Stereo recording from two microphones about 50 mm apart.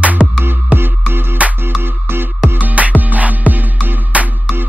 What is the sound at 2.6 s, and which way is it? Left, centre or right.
Music, right.